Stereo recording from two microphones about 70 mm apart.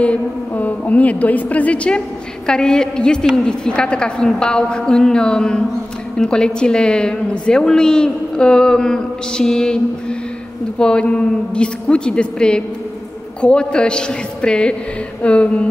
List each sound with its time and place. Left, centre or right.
0.0 s a woman's voice: centre